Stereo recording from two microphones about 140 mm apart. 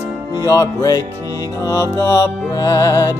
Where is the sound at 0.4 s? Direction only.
25° left (ahead or behind).